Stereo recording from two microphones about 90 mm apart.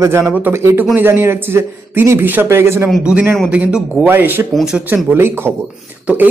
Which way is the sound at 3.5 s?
15° right (ahead or behind).